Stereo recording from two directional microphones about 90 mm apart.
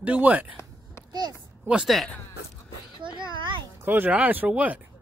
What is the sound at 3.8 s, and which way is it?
Speech, 20° right (ahead or behind).